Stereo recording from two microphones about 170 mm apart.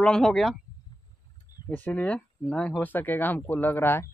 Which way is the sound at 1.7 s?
10° left (ahead or behind).